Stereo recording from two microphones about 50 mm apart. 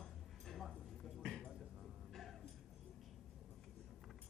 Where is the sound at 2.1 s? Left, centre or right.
Centre.